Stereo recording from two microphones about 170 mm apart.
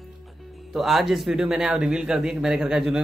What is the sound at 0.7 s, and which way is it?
Speech, centre (ahead or behind).